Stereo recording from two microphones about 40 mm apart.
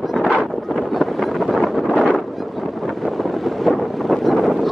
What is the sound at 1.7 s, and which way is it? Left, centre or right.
Wind noise, centre.